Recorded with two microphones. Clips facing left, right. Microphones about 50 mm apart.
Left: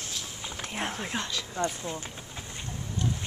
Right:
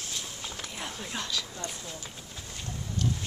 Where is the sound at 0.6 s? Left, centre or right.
Left.